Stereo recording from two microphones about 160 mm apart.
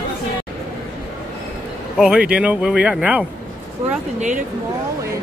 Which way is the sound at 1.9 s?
5° right (ahead or behind).